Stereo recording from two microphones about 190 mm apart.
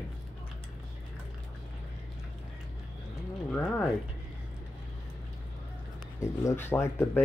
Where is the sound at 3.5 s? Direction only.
5° left (ahead or behind).